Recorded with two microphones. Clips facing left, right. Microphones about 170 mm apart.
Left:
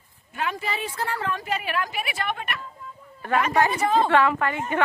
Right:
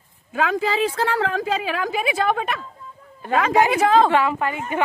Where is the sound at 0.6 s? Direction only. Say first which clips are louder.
Right 9 dB; 90° right.